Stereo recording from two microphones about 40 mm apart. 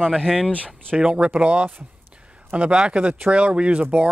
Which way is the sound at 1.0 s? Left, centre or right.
Right.